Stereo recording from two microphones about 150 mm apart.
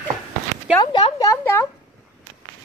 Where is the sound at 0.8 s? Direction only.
30° left (ahead or behind).